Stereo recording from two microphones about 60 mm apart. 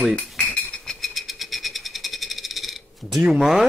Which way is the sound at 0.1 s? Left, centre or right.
Centre.